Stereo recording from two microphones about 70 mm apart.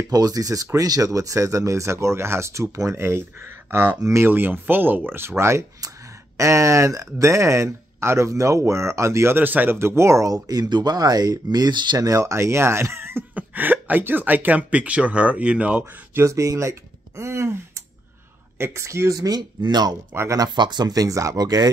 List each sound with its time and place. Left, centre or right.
0.1 s speech: right
4.0 s speech: right
4.3 s speech: right
9.8 s speech: right
10.3 s speech: right
12.0 s speech: right
13.3 s speech: right
15.8 s speech: right
18.6 s speech: right
19.1 s speech: right